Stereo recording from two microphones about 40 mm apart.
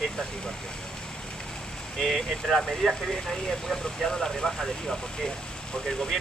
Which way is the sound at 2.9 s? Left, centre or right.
Centre.